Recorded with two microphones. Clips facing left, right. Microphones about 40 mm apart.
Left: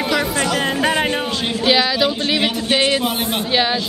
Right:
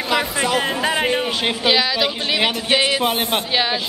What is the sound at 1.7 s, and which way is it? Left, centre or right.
A man's voice, centre.